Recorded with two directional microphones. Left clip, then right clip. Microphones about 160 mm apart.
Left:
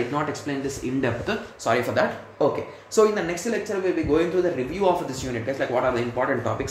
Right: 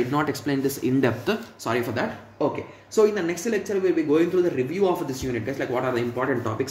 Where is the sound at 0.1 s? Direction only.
60° right (ahead or behind).